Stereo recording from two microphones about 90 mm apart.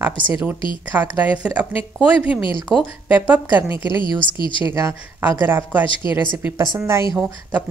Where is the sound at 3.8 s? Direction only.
65° left (ahead or behind).